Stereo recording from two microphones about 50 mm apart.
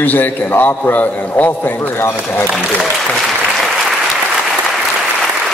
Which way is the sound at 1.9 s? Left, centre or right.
Left.